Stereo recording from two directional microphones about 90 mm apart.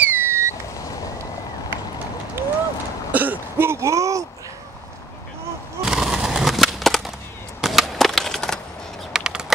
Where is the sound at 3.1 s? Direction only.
20° right (ahead or behind); by 4.3 s 35° right (ahead or behind).